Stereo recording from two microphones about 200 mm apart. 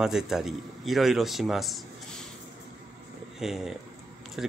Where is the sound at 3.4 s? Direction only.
Centre (ahead or behind).